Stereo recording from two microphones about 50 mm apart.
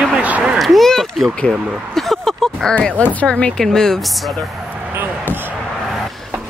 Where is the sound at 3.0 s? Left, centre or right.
Left.